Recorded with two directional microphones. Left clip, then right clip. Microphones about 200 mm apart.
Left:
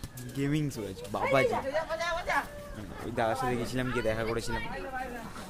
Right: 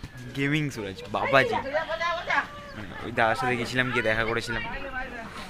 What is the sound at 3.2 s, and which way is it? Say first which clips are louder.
Speech: right 6 dB; centre (ahead or behind).